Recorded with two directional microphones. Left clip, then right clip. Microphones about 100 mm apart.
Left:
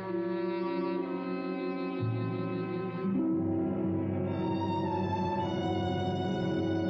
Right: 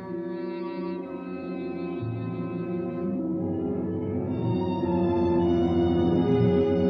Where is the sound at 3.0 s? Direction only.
25° left (ahead or behind).